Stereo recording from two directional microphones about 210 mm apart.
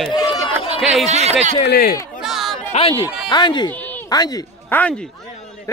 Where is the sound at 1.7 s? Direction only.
45° left (ahead or behind).